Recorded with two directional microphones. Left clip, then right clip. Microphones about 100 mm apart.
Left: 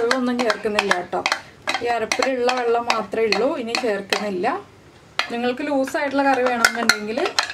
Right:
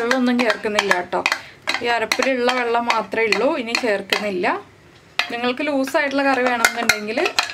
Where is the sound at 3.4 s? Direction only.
30° right (ahead or behind).